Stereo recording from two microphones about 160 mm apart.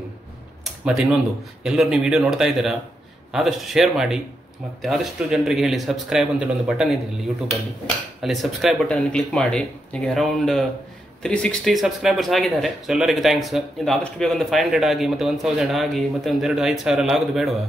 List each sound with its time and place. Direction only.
0.8 s speech: 5° right (ahead or behind)
8.2 s speech: centre (ahead or behind)